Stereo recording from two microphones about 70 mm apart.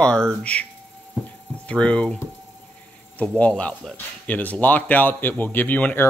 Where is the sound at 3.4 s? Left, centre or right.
Centre.